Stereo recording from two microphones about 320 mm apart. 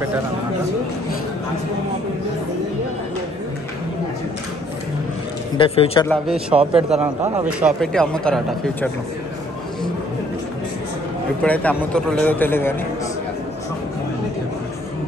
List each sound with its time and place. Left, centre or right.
5.6 s a man's voice: centre
6.0 s speech: centre
6.6 s a man's voice: centre
7.0 s speech: centre
11.4 s speech: centre